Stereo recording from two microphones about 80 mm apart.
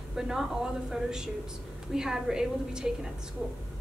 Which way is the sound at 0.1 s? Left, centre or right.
Centre.